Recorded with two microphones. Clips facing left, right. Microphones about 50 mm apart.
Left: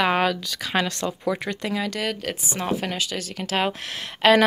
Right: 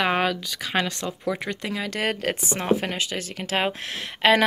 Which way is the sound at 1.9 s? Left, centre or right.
Right.